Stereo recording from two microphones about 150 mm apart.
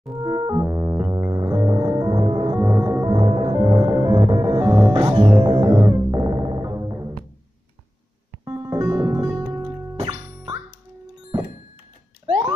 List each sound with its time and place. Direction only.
0.2 s music: 20° right (ahead or behind)
4.6 s music: 15° right (ahead or behind)
5.1 s music: 35° right (ahead or behind)
8.5 s music: 20° right (ahead or behind)
12.3 s rodents: 30° right (ahead or behind)